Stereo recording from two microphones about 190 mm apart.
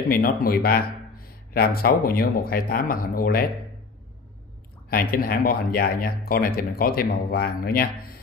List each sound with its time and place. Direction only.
0.1 s speech: 50° left (ahead or behind)
4.8 s speech: 50° left (ahead or behind)